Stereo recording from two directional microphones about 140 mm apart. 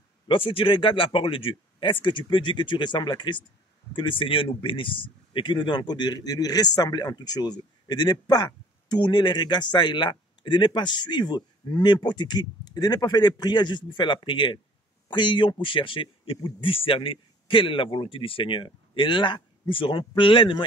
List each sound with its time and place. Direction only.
0.3 s speech: 40° left (ahead or behind)